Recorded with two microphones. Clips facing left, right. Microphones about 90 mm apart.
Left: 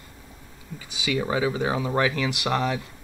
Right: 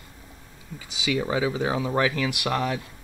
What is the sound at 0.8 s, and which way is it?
Speech, 5° right (ahead or behind).